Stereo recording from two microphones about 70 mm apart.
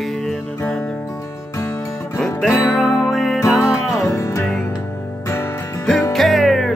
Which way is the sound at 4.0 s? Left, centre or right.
Left.